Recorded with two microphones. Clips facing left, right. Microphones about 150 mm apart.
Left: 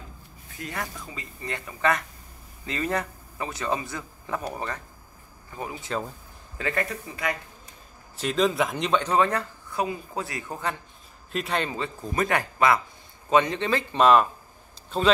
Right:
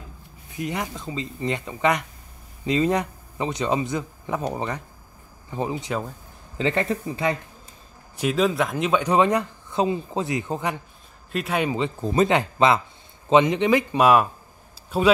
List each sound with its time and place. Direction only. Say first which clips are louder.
0.6 s speech: right 6 dB; 20° right (ahead or behind)
8.2 s speech: right 2 dB; 5° right (ahead or behind)
11.3 s a man's voice: right 3 dB; 5° right (ahead or behind)
12.0 s speech: right 6 dB; 25° right (ahead or behind); by 15.1 s 10° right (ahead or behind)